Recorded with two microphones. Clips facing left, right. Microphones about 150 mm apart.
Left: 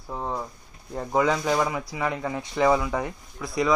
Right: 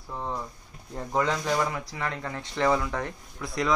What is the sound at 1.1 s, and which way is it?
A man's voice, 10° left (ahead or behind).